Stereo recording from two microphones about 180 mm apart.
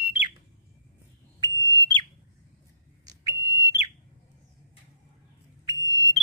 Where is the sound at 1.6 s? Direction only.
20° right (ahead or behind).